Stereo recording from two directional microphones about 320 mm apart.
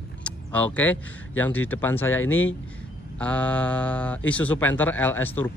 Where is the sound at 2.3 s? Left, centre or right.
Left.